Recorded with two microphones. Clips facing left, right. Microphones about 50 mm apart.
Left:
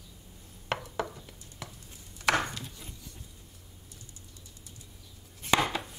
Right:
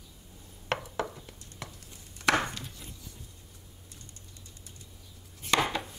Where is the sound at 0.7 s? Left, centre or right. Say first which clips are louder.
Even; centre.